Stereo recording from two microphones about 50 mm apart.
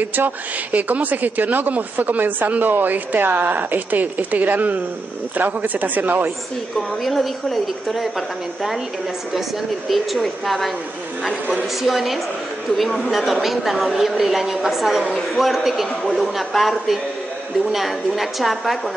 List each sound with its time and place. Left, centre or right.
0.0 s speech: right
7.0 s a woman's voice: centre
9.8 s a woman's voice: centre